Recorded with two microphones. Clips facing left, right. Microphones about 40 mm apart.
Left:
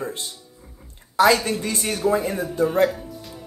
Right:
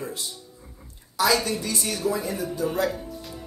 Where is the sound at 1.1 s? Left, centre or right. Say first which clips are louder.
Left 5 dB; left.